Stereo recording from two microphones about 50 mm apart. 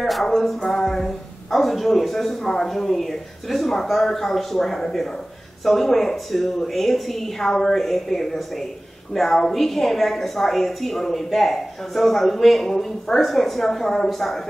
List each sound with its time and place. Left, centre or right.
0.0 s music: centre
0.7 s a woman's voice: centre